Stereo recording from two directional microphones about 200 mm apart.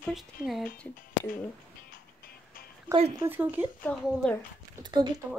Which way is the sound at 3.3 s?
10° right (ahead or behind).